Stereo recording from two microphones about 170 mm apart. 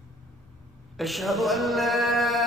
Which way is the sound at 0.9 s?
Centre (ahead or behind).